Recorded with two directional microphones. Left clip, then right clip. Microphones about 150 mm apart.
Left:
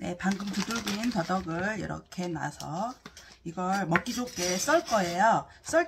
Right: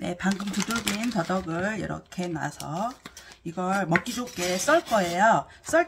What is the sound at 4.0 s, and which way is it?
Speech, centre (ahead or behind).